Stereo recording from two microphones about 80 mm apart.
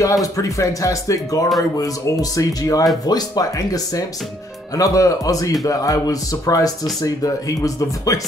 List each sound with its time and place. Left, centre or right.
0.0 s speech: left